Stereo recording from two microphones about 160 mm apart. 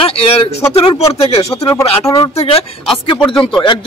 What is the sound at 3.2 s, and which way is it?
Speech, 5° left (ahead or behind).